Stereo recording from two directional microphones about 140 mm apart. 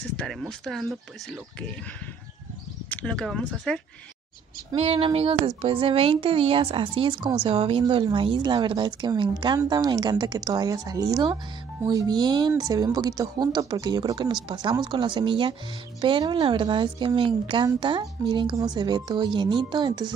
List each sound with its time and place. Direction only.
0.2 s speech: 5° left (ahead or behind)
2.9 s speech: 10° left (ahead or behind)
4.7 s female singing: 45° right (ahead or behind)
5.6 s speech: 40° right (ahead or behind)